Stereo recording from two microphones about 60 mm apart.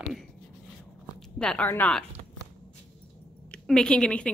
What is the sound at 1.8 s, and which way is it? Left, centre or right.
Speech, left.